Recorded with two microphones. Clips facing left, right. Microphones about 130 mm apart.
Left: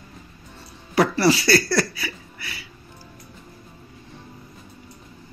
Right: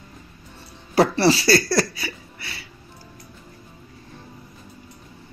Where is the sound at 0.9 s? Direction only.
30° right (ahead or behind).